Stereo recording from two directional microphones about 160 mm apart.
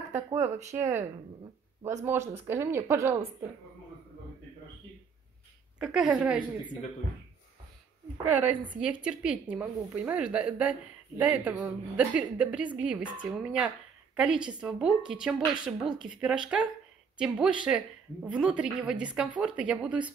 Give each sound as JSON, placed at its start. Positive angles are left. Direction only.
{"t": 0.1, "sound": "speech", "side_deg": -15}
{"t": 2.3, "sound": "speech", "side_deg": -15}
{"t": 5.8, "sound": "a woman's voice", "side_deg": -5}
{"t": 8.4, "sound": "a woman's voice", "side_deg": -10}